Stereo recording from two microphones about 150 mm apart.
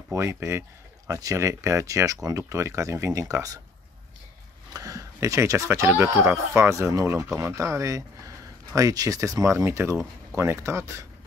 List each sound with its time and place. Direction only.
0.1 s speech: 20° right (ahead or behind)
4.7 s speech: 25° right (ahead or behind)